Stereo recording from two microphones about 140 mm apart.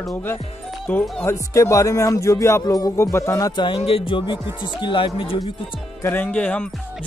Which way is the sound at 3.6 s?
40° left (ahead or behind).